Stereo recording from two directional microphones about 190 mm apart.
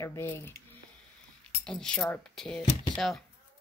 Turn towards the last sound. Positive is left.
turn(degrees=0)  # may be behind; listen again after turning